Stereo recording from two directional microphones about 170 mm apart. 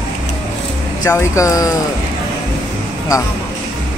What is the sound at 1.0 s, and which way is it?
Speech, 20° left (ahead or behind).